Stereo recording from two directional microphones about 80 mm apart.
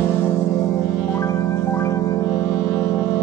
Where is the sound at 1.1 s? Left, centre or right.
Left.